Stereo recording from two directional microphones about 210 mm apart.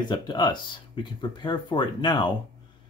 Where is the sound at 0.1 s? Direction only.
20° left (ahead or behind).